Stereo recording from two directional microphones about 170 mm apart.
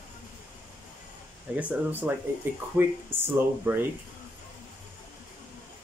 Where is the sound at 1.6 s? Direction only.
10° right (ahead or behind).